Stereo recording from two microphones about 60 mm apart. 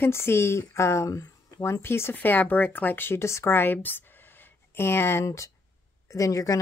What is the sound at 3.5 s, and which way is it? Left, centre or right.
Speech, left.